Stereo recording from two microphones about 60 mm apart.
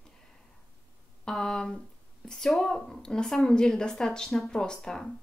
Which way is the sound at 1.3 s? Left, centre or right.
Centre.